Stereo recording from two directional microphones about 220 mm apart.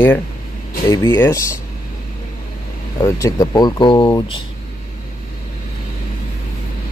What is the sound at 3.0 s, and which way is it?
Speech, 15° left (ahead or behind).